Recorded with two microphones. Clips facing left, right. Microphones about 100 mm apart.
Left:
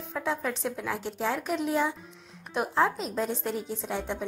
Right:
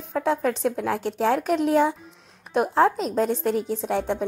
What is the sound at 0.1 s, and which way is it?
A woman's voice, 50° right (ahead or behind).